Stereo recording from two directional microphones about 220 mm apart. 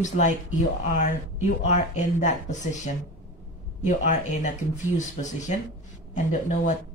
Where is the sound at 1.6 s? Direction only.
35° left (ahead or behind).